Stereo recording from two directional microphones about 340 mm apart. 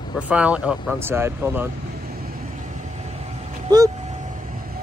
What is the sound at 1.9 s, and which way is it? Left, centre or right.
Vehicle, right.